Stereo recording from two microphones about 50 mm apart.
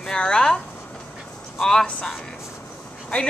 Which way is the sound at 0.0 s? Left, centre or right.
Centre.